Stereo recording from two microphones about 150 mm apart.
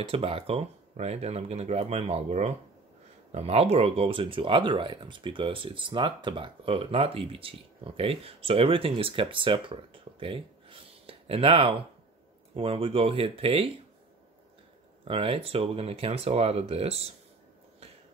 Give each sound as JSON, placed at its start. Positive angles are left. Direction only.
{"t": 0.1, "sound": "speech", "side_deg": -40}
{"t": 15.0, "sound": "speech", "side_deg": -40}